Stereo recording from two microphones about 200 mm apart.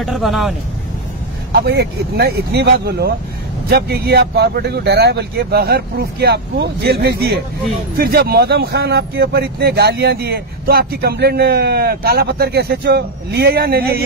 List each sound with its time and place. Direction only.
0.0 s speech: centre (ahead or behind)
1.5 s speech: 55° right (ahead or behind)